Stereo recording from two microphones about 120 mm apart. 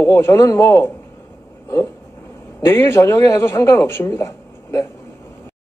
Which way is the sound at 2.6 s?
20° left (ahead or behind).